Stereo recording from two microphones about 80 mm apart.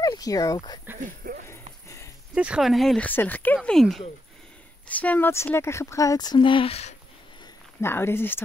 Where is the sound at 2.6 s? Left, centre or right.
Centre.